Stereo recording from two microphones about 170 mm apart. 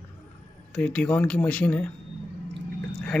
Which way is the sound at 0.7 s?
5° left (ahead or behind).